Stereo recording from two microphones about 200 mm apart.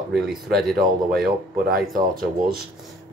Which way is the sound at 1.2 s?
45° right (ahead or behind).